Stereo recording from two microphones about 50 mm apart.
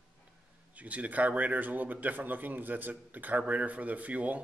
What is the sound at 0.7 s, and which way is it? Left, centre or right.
Speech, right.